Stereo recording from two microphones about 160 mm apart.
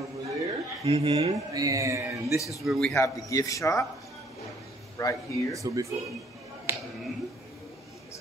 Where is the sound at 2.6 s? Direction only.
Centre (ahead or behind).